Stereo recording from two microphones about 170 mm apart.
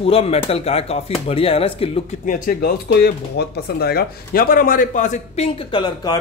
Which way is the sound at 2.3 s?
60° left (ahead or behind).